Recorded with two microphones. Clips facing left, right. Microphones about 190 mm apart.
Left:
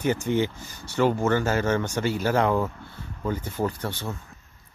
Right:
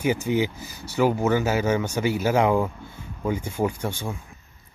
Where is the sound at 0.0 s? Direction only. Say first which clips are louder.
Right 1 dB; 10° right (ahead or behind).